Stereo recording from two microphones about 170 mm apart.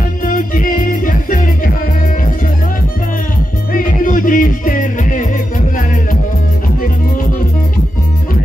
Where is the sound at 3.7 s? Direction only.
55° left (ahead or behind).